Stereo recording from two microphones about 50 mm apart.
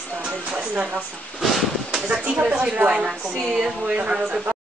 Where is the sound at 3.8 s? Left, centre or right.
Right.